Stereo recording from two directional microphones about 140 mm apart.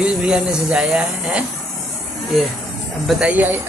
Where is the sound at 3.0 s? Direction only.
Centre (ahead or behind).